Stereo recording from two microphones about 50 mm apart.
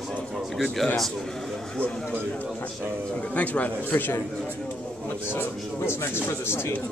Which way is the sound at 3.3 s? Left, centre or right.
Left.